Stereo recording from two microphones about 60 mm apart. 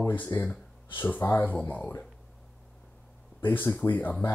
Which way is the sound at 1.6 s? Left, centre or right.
Left.